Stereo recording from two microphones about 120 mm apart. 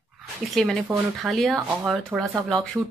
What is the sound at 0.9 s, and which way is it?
Speech, 30° right (ahead or behind).